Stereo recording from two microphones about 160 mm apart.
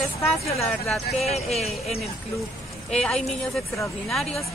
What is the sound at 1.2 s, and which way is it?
Speech, 40° left (ahead or behind).